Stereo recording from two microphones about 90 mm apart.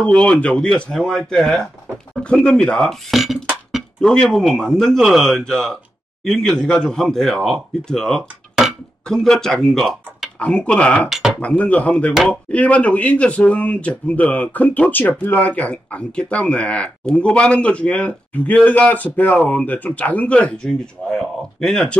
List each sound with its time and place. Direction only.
0.0 s speech: 10° left (ahead or behind)
11.1 s speech: 5° right (ahead or behind)
11.4 s speech: 15° left (ahead or behind)